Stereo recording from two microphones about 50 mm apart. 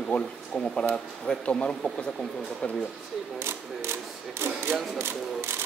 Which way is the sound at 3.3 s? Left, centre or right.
Right.